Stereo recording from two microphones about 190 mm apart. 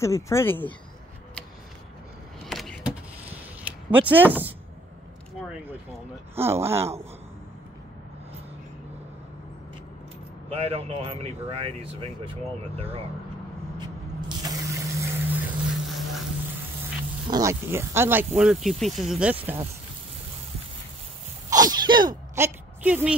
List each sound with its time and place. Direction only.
0.0 s speech: 15° left (ahead or behind)
2.4 s vehicle: centre (ahead or behind)
3.9 s speech: 10° right (ahead or behind)
6.3 s speech: 15° right (ahead or behind)
10.5 s speech: 30° right (ahead or behind)
13.7 s spray: 20° right (ahead or behind); by 16.0 s 5° right (ahead or behind)
17.3 s speech: 15° right (ahead or behind)
21.5 s speech: 20° right (ahead or behind)